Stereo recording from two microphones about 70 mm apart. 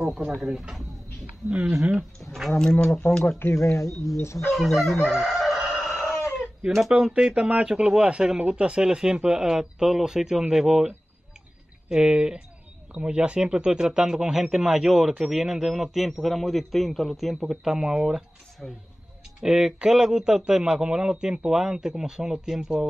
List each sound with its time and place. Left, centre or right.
0.0 s speech: centre
2.6 s speech: centre
2.9 s speech: left
4.5 s speech: centre
5.0 s chicken: centre
6.9 s speech: centre